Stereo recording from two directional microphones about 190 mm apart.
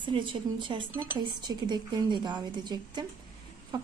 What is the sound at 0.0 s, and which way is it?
A woman's voice, 25° right (ahead or behind).